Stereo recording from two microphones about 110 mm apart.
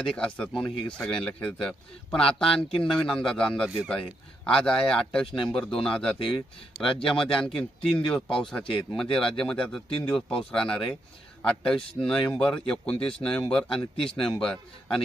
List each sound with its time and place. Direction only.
0.0 s speech: 10° left (ahead or behind)